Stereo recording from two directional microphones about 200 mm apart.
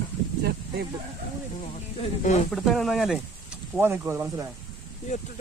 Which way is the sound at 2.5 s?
Centre (ahead or behind).